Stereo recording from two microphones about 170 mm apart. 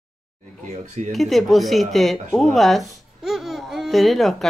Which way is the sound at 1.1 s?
Centre (ahead or behind).